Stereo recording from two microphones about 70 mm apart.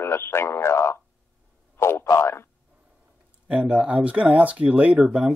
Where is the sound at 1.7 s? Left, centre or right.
Left.